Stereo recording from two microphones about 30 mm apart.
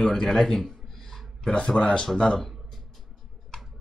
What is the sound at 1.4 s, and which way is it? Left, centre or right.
Speech, left.